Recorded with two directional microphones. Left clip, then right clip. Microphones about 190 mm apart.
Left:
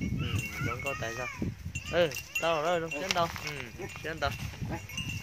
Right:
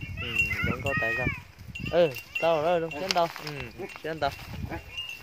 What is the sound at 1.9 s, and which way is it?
Speech, 45° right (ahead or behind).